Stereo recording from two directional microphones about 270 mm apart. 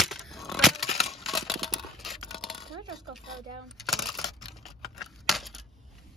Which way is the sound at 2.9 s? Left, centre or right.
Centre.